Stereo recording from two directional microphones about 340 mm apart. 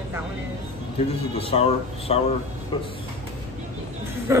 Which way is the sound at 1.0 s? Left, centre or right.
Centre.